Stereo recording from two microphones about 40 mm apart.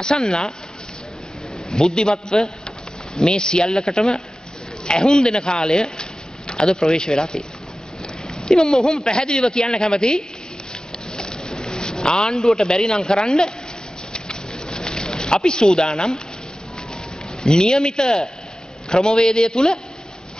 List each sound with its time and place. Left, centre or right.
0.0 s speech: left
1.7 s speech: centre
3.7 s speech: centre
10.7 s a sound: centre
12.6 s speech: centre
14.1 s a sound: centre
17.4 s speech: centre